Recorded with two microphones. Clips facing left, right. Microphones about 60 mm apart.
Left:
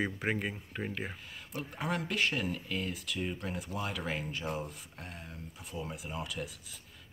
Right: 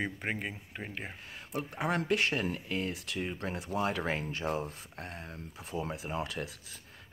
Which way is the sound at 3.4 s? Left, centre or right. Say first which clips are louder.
Right 5 dB; right.